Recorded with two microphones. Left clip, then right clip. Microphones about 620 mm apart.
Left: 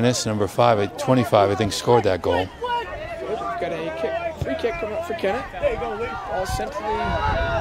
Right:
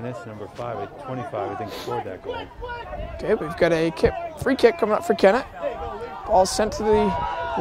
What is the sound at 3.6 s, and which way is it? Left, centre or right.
Speech, right.